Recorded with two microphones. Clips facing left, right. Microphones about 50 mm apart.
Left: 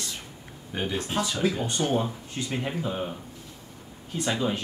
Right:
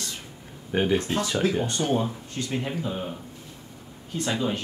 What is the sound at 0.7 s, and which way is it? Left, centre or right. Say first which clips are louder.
Speech: right 7 dB; right.